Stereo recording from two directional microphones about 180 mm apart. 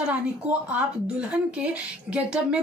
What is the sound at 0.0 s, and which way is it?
A woman's voice, 5° right (ahead or behind).